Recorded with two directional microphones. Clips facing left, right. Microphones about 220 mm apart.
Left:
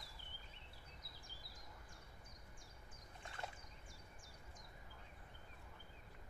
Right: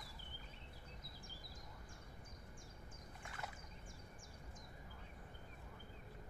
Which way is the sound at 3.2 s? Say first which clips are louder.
Left 1 dB; 30° left (ahead or behind).